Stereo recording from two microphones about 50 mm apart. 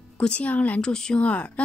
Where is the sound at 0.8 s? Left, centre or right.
Centre.